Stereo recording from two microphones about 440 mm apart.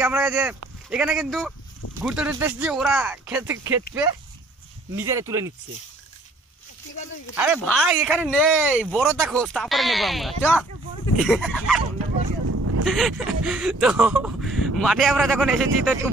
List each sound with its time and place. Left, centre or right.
0.0 s speech: centre
4.9 s speech: centre
7.3 s speech: centre
12.4 s a sound: right
12.8 s speech: centre